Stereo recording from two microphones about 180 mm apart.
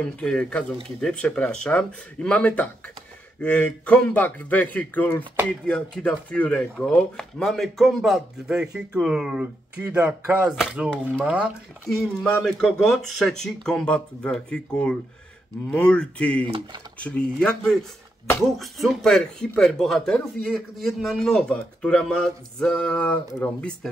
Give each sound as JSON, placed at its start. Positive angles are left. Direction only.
{"t": 0.0, "sound": "a man's voice", "side_deg": 5}
{"t": 16.4, "sound": "speech", "side_deg": -25}
{"t": 17.0, "sound": "speech", "side_deg": 5}